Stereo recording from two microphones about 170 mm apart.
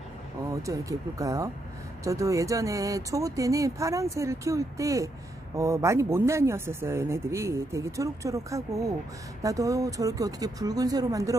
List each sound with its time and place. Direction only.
0.5 s speech: 20° right (ahead or behind)